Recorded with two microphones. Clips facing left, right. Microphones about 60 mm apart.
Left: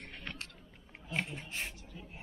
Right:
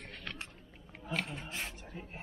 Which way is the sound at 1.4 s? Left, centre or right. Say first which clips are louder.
Even; right.